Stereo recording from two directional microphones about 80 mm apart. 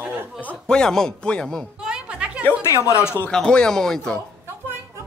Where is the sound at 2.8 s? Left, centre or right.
Left.